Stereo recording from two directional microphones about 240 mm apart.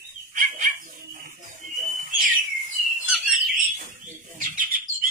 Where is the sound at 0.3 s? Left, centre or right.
Right.